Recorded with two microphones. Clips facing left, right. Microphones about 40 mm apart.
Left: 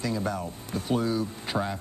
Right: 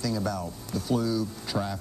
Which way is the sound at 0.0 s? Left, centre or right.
Left.